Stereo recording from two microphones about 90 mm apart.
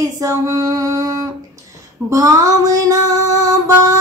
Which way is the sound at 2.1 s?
40° right (ahead or behind).